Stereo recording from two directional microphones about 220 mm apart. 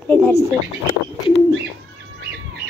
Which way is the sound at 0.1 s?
10° left (ahead or behind).